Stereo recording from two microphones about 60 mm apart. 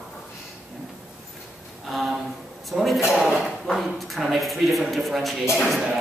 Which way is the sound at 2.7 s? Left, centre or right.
Centre.